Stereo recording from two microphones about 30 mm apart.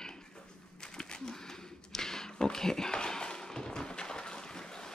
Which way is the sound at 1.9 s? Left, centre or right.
Centre.